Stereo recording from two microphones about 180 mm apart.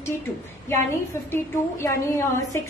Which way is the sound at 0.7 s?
15° left (ahead or behind).